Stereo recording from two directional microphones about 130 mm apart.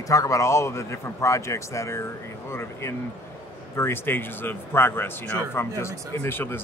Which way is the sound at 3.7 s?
20° left (ahead or behind).